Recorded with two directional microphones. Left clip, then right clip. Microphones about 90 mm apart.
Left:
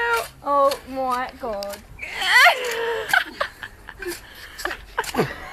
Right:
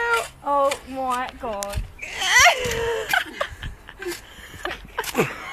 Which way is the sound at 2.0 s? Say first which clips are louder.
Left 1 dB; 5° right (ahead or behind).